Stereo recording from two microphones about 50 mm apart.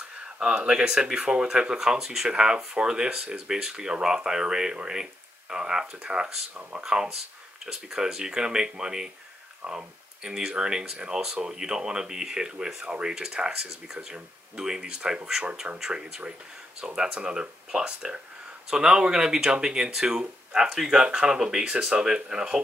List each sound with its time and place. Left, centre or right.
0.2 s speech: centre
6.5 s speech: right
6.8 s speech: centre
13.9 s speech: centre